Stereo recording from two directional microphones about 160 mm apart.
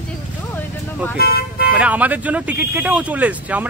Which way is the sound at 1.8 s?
10° right (ahead or behind).